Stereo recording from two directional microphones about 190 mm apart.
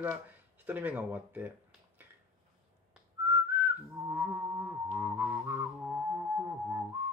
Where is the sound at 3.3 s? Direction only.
10° right (ahead or behind).